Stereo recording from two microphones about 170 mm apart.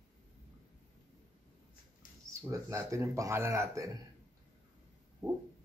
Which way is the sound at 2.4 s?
20° right (ahead or behind).